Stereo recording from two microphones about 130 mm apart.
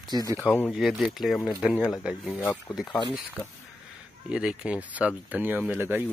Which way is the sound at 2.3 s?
15° left (ahead or behind).